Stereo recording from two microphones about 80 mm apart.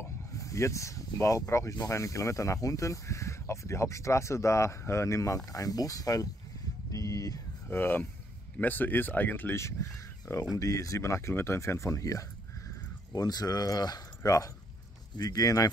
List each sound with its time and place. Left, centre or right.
0.0 s speech: left
7.6 s speech: left
13.1 s speech: left